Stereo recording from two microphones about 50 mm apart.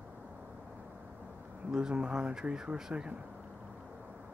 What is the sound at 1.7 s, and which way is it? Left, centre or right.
Speech, right.